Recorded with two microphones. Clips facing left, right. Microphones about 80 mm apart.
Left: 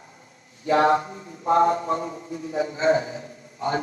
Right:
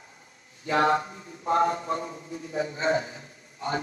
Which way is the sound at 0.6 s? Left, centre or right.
Left.